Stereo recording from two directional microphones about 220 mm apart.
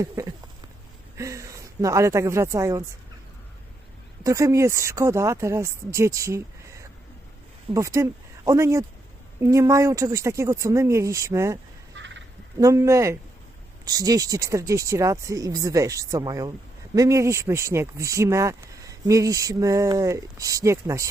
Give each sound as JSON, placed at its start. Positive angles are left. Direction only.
{"t": 0.0, "sound": "speech", "side_deg": -15}
{"t": 4.2, "sound": "speech", "side_deg": -15}
{"t": 11.9, "sound": "fowl", "side_deg": -55}
{"t": 12.5, "sound": "speech", "side_deg": -15}